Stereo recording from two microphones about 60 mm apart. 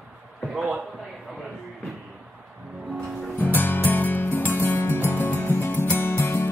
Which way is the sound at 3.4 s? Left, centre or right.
Left.